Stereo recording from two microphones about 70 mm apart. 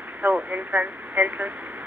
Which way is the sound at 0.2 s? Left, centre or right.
Right.